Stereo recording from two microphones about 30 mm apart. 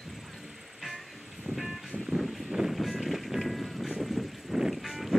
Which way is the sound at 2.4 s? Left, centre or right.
Centre.